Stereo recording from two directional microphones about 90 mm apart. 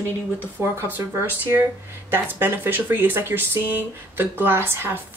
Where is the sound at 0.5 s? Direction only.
25° right (ahead or behind).